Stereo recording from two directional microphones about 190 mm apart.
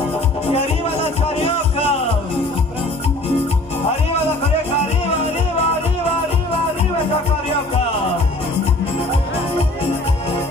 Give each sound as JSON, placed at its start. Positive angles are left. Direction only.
{"t": 0.5, "sound": "music", "side_deg": 30}